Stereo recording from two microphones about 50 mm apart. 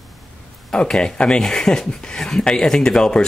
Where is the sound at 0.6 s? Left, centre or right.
Centre.